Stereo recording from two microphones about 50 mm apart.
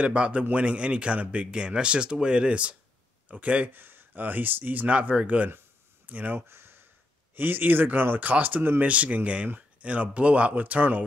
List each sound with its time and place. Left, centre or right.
0.0 s speech: right
3.7 s speech: right
6.5 s a sound: right
7.3 s speech: right
8.8 s speech: right